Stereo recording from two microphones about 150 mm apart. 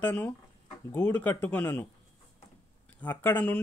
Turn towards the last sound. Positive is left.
turn(degrees=10)  # may be behind; listen again after turning